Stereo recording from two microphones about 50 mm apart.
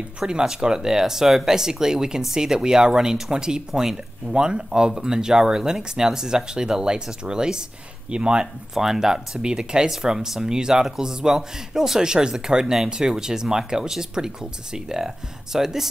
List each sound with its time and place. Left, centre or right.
0.3 s speech: centre
8.7 s speech: centre